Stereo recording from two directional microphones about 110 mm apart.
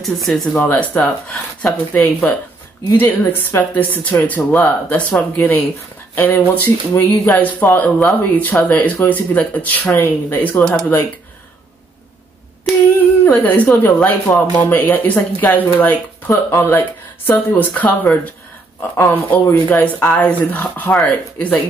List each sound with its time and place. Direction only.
0.0 s speech: centre (ahead or behind)
0.6 s speech: 15° left (ahead or behind)
13.2 s speech: 20° left (ahead or behind)
16.3 s speech: 25° left (ahead or behind)